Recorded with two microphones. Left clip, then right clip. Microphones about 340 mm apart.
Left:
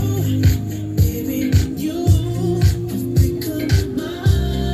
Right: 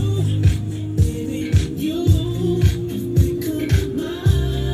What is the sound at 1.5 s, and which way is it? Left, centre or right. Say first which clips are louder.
Music: left 1 dB; centre.